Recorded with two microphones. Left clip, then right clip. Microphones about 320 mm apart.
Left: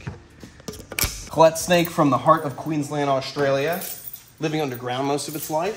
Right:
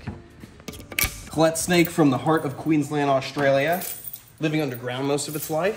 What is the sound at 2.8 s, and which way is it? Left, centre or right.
Speech, centre.